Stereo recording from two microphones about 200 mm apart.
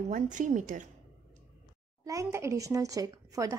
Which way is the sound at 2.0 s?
15° right (ahead or behind).